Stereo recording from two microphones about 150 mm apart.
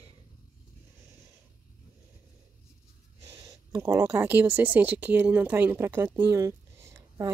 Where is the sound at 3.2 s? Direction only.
20° right (ahead or behind).